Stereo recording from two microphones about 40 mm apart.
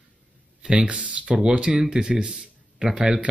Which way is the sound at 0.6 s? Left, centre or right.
Right.